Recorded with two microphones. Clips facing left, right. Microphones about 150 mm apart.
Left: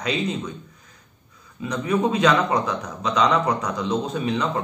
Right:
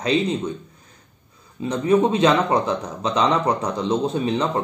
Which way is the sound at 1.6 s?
30° right (ahead or behind).